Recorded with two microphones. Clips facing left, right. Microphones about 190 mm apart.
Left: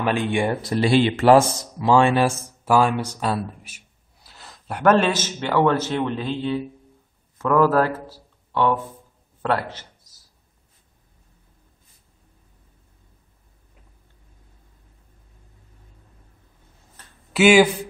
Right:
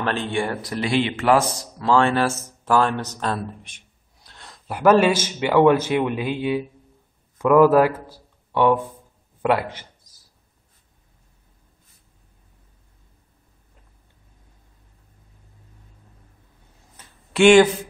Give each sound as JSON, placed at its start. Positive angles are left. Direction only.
{"t": 0.0, "sound": "speech", "side_deg": 10}
{"t": 0.8, "sound": "speech", "side_deg": 35}
{"t": 1.8, "sound": "a man's voice", "side_deg": 15}
{"t": 17.3, "sound": "speech", "side_deg": 5}